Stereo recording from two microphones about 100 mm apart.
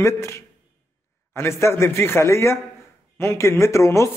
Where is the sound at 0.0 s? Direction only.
30° left (ahead or behind).